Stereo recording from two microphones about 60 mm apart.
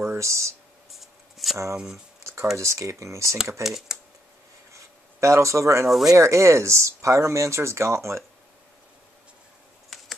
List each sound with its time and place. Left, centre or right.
0.0 s speech: right
0.9 s a sound: centre
2.5 s speech: right
3.6 s speech: centre
5.2 s speech: right
5.9 s speech: centre
6.1 s speech: right
9.9 s computer keyboard: centre